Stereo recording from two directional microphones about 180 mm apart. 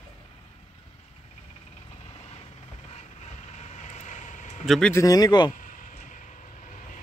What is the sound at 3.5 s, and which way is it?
Vehicle, 40° left (ahead or behind).